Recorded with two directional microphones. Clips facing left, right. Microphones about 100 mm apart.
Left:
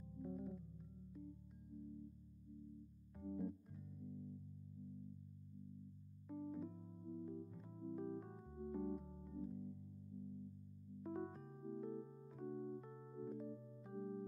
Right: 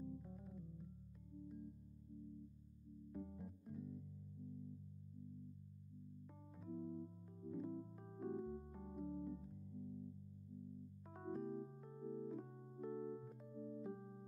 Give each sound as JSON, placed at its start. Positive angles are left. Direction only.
{"t": 0.2, "sound": "organ", "side_deg": 5}
{"t": 3.3, "sound": "keyboard", "side_deg": 0}
{"t": 6.3, "sound": "electric piano", "side_deg": 5}
{"t": 11.1, "sound": "electric piano", "side_deg": 0}
{"t": 11.7, "sound": "music", "side_deg": 5}
{"t": 12.1, "sound": "keyboard", "side_deg": -5}
{"t": 12.9, "sound": "music", "side_deg": -5}